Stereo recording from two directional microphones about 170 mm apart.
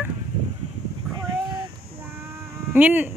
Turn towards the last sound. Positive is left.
turn(degrees=-10)  # may be behind; listen again after turning